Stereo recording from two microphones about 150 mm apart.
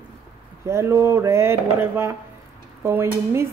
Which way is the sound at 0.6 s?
20° right (ahead or behind).